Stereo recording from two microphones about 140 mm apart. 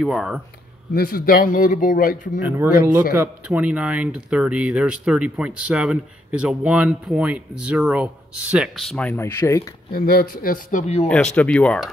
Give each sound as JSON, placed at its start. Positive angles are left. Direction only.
{"t": 0.0, "sound": "speech", "side_deg": 0}
{"t": 0.9, "sound": "a man's voice", "side_deg": 90}
{"t": 2.4, "sound": "speech", "side_deg": -15}
{"t": 9.8, "sound": "speech", "side_deg": 90}
{"t": 11.1, "sound": "speech", "side_deg": 5}